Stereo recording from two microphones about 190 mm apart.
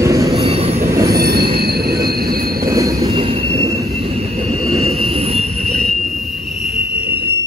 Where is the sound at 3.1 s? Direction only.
30° right (ahead or behind).